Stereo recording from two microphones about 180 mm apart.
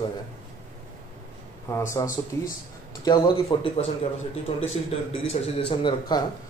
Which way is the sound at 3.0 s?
25° left (ahead or behind).